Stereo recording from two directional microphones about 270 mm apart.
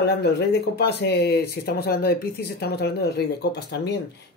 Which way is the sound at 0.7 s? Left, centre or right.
Left.